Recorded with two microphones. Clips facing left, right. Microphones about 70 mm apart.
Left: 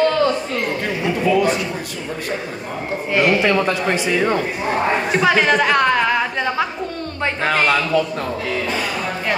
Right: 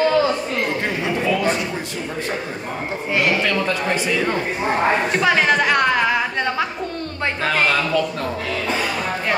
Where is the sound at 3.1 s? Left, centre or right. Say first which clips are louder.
Left 3 dB; centre.